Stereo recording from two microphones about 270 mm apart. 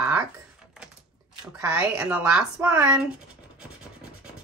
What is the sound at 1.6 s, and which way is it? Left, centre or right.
Speech, centre.